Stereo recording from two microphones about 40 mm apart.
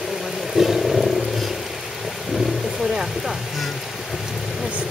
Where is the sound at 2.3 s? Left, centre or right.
Centre.